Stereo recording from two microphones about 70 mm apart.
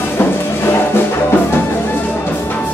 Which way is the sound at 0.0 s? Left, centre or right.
Left.